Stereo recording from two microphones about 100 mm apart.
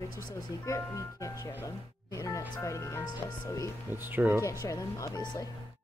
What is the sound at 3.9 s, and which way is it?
Speech, 20° right (ahead or behind).